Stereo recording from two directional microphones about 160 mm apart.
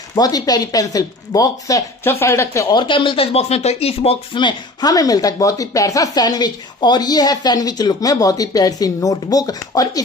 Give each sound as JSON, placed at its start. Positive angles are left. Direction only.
{"t": 0.1, "sound": "speech", "side_deg": 25}